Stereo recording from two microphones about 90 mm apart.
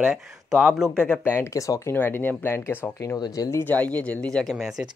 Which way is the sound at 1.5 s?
40° left (ahead or behind).